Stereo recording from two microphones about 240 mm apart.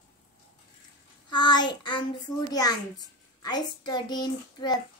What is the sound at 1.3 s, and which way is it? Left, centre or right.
A child's voice, centre.